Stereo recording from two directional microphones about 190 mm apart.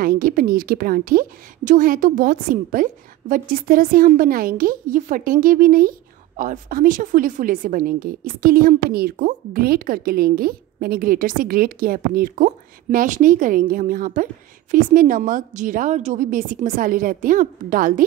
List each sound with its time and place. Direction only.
0.0 s a woman's voice: 50° right (ahead or behind)